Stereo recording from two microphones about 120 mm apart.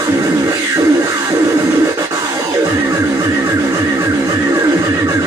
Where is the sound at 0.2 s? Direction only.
30° right (ahead or behind).